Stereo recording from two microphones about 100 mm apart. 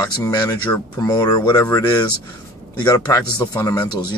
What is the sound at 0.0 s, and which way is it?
Speech, 40° left (ahead or behind).